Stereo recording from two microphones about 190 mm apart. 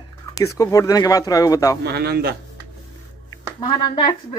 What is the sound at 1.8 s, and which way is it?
Speech, 55° right (ahead or behind).